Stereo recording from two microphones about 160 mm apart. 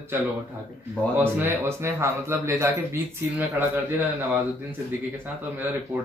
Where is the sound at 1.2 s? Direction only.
15° right (ahead or behind).